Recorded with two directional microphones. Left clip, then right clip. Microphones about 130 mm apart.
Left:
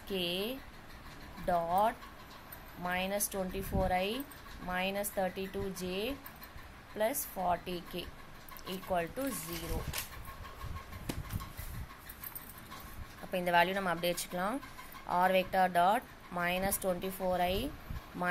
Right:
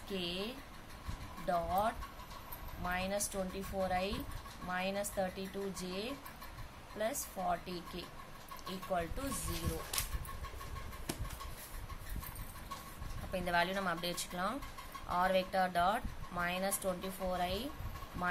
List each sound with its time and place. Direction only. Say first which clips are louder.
0.1 s speech: left 5 dB; 35° left (ahead or behind)
13.3 s speech: left 5 dB; 35° left (ahead or behind)